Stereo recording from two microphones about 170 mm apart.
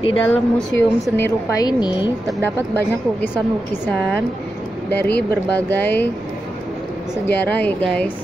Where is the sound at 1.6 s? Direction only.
25° left (ahead or behind).